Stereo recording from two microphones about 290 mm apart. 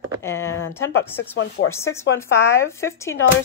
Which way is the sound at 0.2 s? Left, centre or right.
Centre.